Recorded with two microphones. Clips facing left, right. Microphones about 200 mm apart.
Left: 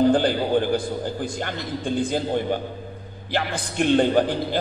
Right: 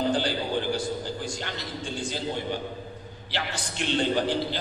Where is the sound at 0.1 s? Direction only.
55° left (ahead or behind).